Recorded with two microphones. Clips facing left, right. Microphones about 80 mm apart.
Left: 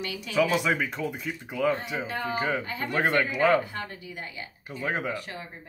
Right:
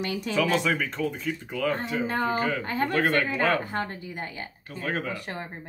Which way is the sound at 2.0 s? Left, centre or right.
Right.